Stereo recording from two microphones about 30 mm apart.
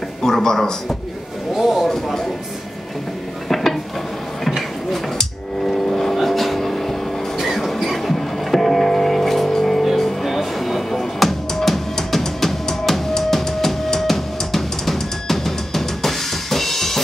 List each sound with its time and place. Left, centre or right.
0.2 s a man's voice: centre
1.5 s speech: centre
3.4 s a sound: centre
5.7 s vehicle: centre
7.3 s train: centre
8.1 s music: centre
12.2 s drum: centre
13.3 s music: centre